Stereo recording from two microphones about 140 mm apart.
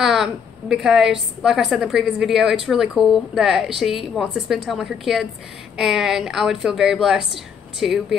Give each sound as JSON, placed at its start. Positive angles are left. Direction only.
{"t": 0.0, "sound": "a woman's voice", "side_deg": -5}